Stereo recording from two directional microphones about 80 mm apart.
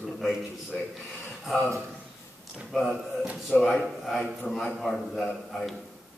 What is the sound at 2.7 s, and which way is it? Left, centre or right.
Speech, centre.